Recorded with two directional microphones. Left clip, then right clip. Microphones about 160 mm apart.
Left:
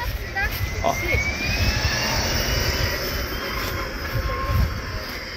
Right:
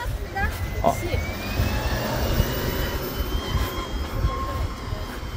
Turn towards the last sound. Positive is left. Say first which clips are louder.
# left 3 dB
turn(degrees=-50)  # may be behind; listen again after turning